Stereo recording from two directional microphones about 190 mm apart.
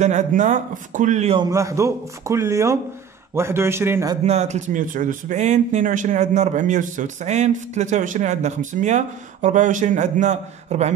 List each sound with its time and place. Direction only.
0.0 s speech: 40° right (ahead or behind)
1.4 s speech: 15° right (ahead or behind)
4.2 s speech: 35° right (ahead or behind)